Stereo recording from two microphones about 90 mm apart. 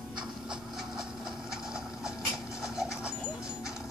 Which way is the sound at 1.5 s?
10° right (ahead or behind).